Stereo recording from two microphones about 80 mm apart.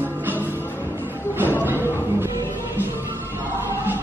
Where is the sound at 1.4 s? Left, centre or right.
Right.